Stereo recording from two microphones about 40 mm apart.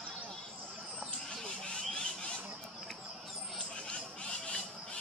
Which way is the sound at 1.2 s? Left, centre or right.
Left.